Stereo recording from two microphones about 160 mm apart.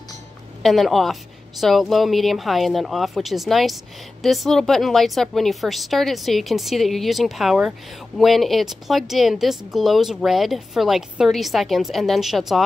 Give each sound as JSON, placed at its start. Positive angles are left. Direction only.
{"t": 0.6, "sound": "speech", "side_deg": 0}